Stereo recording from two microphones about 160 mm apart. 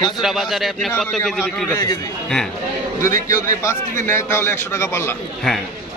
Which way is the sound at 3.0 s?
20° left (ahead or behind).